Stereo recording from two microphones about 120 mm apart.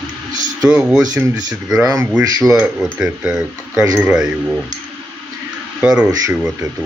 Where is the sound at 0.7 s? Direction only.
5° right (ahead or behind).